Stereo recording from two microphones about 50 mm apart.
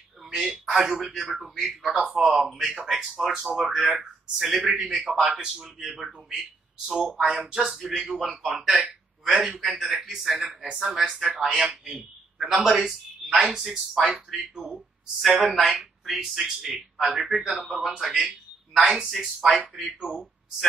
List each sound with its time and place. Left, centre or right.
0.3 s a man's voice: centre
12.5 s a man's voice: centre
19.1 s speech: centre
19.6 s speech: right